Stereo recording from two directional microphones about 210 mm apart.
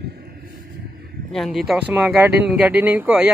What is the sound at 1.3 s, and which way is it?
Speech, centre (ahead or behind).